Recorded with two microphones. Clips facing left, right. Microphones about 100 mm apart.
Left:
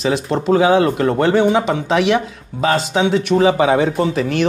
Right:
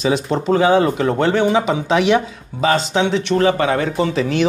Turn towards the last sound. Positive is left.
turn(degrees=0)  # may be behind; listen again after turning